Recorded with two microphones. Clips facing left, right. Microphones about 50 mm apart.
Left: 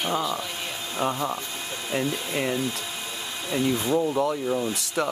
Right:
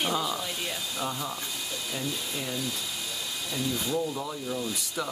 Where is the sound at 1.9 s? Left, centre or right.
Left.